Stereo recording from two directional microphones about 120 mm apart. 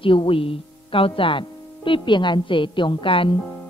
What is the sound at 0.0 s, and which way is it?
A woman's voice, 45° left (ahead or behind).